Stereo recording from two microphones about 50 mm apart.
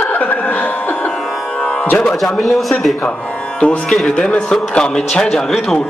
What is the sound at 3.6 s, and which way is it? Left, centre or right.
A man's voice, centre.